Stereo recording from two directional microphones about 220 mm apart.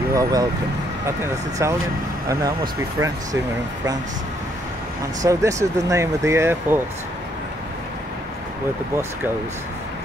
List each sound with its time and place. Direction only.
0.1 s speech: 15° right (ahead or behind)
5.2 s speech: 15° right (ahead or behind)